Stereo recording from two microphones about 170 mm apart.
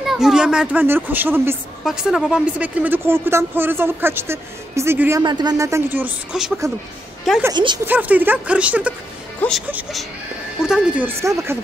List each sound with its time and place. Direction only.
0.0 s speech: centre (ahead or behind)
5.2 s speech: 25° right (ahead or behind); by 6.5 s 5° right (ahead or behind)
7.5 s a woman's voice: 25° right (ahead or behind)
7.8 s speech: 10° right (ahead or behind)